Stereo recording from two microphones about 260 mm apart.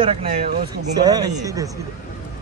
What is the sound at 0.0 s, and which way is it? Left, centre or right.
Speech, right.